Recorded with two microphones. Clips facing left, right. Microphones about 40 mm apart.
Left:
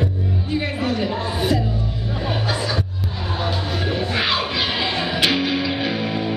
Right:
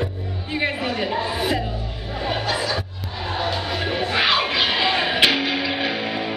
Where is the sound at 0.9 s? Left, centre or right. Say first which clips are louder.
Even; right.